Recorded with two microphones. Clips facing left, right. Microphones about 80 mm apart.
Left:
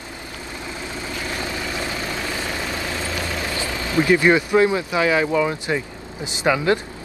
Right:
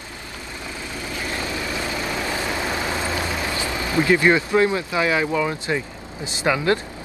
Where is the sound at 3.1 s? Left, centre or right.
Right.